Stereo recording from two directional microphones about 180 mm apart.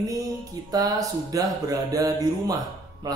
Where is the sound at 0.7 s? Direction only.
20° right (ahead or behind).